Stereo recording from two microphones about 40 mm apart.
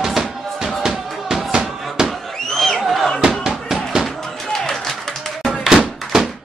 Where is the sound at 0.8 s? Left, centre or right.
Centre.